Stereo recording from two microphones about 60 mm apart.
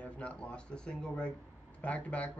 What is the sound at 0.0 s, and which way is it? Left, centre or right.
Speech, centre.